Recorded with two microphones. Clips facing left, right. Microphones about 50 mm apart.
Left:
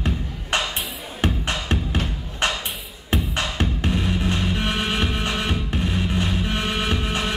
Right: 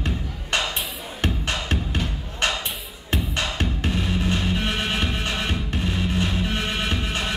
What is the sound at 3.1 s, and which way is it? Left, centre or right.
Music, centre.